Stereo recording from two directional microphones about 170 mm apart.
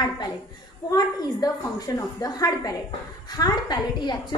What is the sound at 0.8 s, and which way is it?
A woman's voice, 20° left (ahead or behind).